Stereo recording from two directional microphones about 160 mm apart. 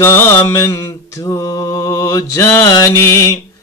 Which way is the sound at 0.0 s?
15° left (ahead or behind).